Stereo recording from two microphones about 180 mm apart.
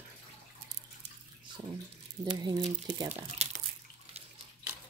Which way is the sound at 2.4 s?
20° right (ahead or behind).